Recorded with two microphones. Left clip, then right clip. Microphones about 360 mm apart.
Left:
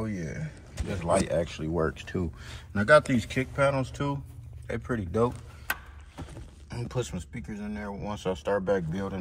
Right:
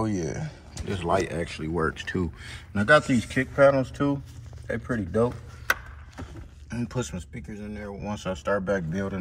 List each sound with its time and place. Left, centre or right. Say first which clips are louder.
0.1 s a sound: right 7 dB; centre
0.9 s speech: even; centre
6.7 s speech: right 2 dB; centre